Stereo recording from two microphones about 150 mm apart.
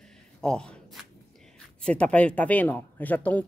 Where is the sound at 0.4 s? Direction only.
5° left (ahead or behind).